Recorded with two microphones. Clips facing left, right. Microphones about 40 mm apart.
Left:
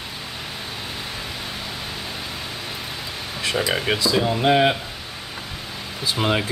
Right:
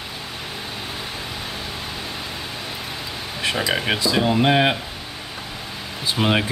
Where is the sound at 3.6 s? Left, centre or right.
Centre.